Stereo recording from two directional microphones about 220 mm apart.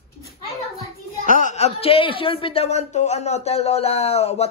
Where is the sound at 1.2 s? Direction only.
35° left (ahead or behind).